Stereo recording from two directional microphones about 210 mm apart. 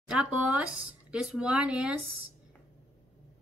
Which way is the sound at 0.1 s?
5° right (ahead or behind).